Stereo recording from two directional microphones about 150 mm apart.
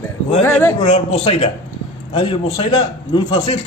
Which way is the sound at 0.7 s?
40° left (ahead or behind).